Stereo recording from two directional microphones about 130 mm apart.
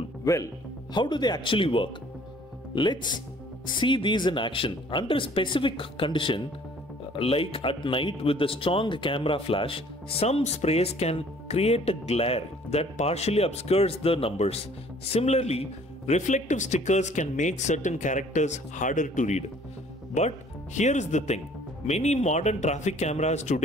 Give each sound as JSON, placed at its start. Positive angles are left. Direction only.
{"t": 0.2, "sound": "a man's voice", "side_deg": 25}